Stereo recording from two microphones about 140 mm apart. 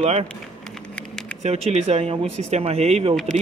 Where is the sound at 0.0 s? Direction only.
50° right (ahead or behind).